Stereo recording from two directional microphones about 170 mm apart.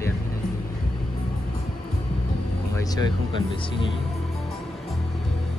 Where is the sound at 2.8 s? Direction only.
25° left (ahead or behind).